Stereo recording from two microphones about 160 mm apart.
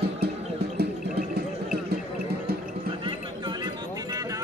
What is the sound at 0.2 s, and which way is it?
Music, 90° right.